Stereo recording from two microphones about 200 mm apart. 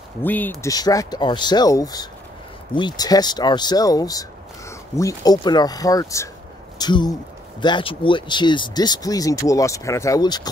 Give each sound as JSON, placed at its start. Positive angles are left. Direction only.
{"t": 0.2, "sound": "speech", "side_deg": 10}